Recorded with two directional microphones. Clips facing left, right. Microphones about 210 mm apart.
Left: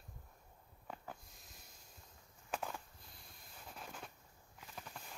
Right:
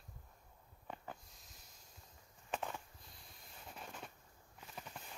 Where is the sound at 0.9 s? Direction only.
Centre (ahead or behind).